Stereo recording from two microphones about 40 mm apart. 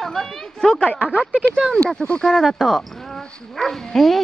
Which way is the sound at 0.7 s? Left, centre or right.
Left.